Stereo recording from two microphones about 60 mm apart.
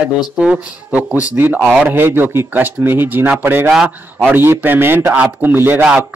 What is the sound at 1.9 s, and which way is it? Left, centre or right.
Speech, right.